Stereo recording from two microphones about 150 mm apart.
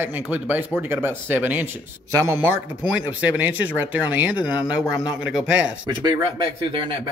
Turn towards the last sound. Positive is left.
turn(degrees=-35)  # may be behind; listen again after turning